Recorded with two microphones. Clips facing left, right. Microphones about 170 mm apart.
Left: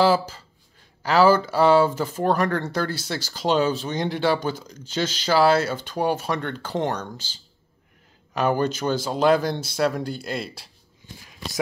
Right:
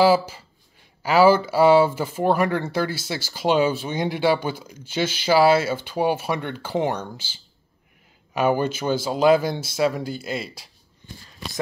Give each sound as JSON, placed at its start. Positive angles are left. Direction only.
{"t": 1.0, "sound": "speech", "side_deg": -10}